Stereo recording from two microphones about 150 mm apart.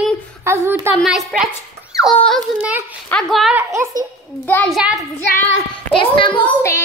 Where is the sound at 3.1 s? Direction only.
Centre (ahead or behind).